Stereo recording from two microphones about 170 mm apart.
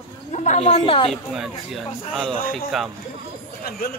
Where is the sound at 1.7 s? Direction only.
Centre (ahead or behind).